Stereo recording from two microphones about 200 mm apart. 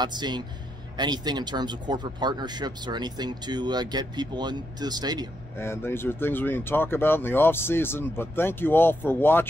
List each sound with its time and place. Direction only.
0.0 s speech: 20° right (ahead or behind)
5.6 s speech: 10° left (ahead or behind)